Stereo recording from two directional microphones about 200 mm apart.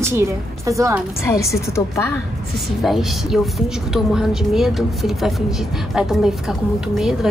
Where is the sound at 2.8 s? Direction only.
Centre (ahead or behind).